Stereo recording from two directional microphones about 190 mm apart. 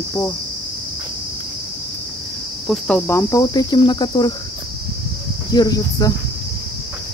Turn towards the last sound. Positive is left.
turn(degrees=20)  # may be behind; listen again after turning